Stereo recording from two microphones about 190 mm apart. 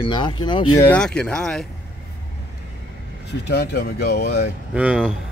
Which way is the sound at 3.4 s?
60° left (ahead or behind).